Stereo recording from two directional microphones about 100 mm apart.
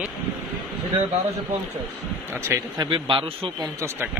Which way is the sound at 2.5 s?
30° right (ahead or behind).